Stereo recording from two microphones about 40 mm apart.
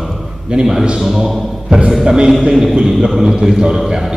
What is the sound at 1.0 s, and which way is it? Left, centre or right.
A man's voice, centre.